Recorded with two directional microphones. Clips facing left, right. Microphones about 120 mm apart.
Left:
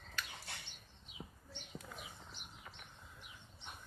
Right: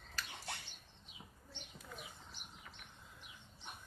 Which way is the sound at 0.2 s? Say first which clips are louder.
Left 1 dB; 35° right (ahead or behind).